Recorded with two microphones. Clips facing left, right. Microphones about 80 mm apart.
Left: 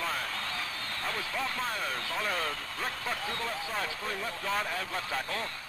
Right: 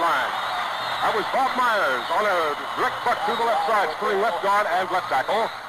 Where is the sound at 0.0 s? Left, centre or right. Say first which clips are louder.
Right 13 dB; right.